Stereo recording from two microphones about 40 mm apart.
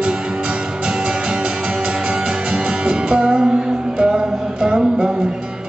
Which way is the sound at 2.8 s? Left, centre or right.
Right.